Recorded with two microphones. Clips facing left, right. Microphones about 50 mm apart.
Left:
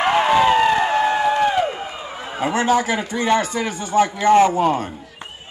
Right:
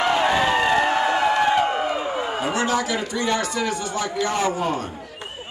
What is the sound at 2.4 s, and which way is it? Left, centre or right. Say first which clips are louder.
A man's voice: left 7 dB; left.